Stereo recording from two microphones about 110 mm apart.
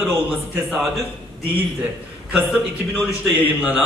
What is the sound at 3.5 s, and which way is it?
Speech, 15° right (ahead or behind).